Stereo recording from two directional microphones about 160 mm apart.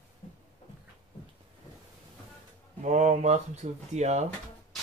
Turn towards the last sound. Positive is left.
turn(degrees=-45)  # may be behind; listen again after turning